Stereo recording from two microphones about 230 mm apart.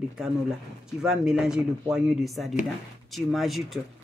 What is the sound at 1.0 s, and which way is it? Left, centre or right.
Speech, centre.